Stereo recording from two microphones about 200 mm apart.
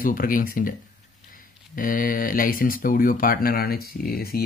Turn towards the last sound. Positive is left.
turn(degrees=50)  # may be behind; listen again after turning